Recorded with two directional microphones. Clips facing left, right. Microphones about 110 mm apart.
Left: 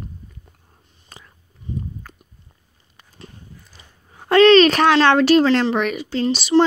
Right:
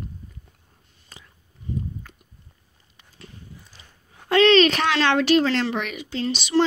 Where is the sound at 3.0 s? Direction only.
40° left (ahead or behind).